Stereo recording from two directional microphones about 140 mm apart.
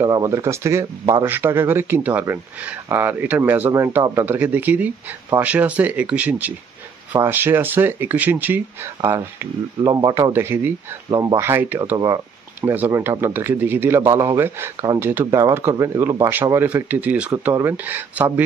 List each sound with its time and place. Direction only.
0.0 s speech: 25° right (ahead or behind)
10.3 s speech: 15° right (ahead or behind)